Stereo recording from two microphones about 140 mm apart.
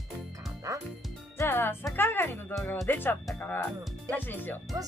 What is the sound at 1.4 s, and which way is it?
Music, 15° left (ahead or behind).